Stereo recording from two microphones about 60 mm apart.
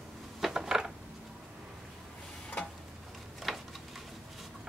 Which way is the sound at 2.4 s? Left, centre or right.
Left.